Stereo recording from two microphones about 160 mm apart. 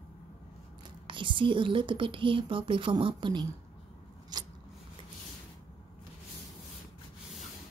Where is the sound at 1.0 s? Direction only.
30° right (ahead or behind).